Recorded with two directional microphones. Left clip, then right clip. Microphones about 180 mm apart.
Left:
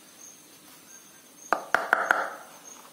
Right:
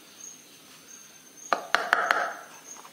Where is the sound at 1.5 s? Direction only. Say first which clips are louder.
Even; 25° left (ahead or behind).